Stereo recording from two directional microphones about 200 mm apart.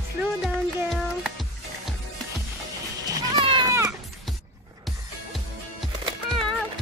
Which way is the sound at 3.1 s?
20° right (ahead or behind).